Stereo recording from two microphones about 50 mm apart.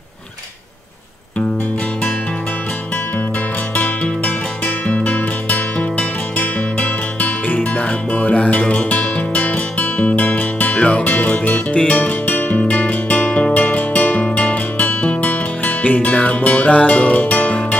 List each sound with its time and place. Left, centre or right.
3.7 s music: left